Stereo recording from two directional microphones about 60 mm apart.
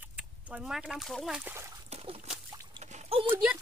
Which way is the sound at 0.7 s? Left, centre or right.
Centre.